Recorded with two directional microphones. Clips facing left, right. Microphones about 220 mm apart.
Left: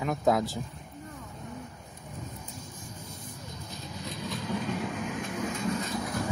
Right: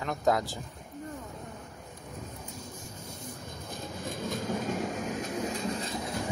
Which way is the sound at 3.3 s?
55° right (ahead or behind).